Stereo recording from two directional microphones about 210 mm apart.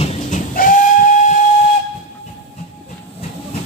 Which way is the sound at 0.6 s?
40° left (ahead or behind).